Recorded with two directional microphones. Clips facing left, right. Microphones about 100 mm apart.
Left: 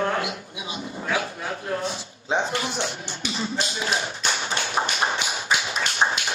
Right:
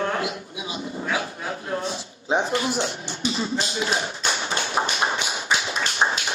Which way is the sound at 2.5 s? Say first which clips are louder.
Right 3 dB; 30° right (ahead or behind).